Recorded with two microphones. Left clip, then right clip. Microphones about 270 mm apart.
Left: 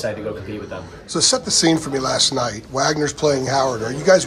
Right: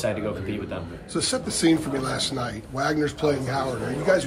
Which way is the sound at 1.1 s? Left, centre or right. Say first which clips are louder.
Left 9 dB; left.